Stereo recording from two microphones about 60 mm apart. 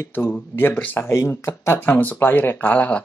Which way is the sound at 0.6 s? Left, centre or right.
Left.